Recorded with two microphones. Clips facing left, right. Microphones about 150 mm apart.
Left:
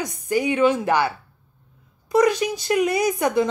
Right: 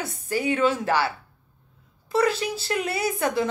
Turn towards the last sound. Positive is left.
turn(degrees=20)  # may be behind; listen again after turning